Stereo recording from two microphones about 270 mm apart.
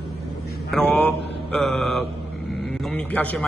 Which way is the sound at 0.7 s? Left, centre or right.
Centre.